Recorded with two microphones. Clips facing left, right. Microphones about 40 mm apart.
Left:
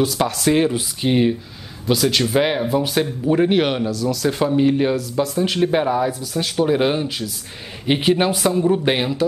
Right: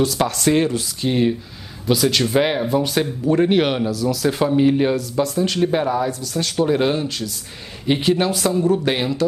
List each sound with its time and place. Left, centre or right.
0.0 s speech: centre
0.7 s speech: centre
1.9 s speech: centre
5.4 s speech: centre